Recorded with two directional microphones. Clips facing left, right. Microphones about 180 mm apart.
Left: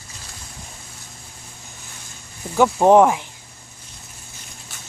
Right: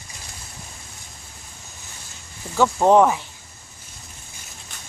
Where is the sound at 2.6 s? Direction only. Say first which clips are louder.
Left 2 dB; 15° left (ahead or behind).